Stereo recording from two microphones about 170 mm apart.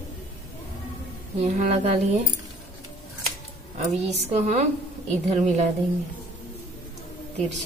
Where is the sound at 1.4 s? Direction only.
40° right (ahead or behind).